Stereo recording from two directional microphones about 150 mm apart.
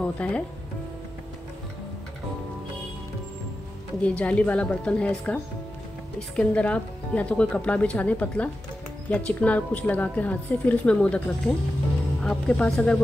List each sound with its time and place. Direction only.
0.0 s speech: 10° left (ahead or behind)
4.0 s a woman's voice: 10° left (ahead or behind)